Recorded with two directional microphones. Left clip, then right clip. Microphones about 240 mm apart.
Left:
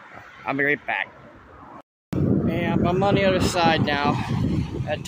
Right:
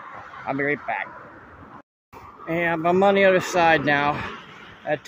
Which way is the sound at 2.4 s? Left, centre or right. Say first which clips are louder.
Right 2 dB; centre.